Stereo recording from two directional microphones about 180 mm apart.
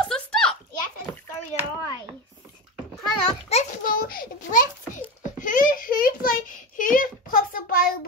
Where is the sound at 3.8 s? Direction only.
55° left (ahead or behind).